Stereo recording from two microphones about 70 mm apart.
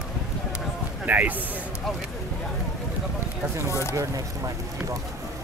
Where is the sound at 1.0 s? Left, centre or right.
Right.